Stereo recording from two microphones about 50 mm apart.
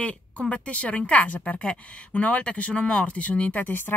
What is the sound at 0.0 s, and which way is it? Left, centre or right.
Speech, left.